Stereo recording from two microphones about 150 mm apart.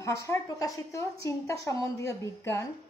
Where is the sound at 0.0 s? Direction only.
20° left (ahead or behind).